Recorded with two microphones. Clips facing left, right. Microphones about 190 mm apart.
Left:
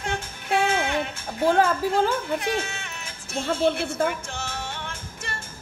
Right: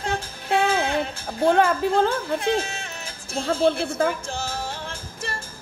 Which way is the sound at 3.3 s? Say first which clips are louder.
Right 2 dB; 35° right (ahead or behind).